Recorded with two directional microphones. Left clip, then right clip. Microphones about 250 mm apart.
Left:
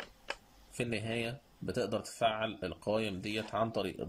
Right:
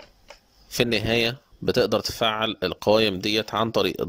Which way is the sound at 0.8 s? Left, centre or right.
Right.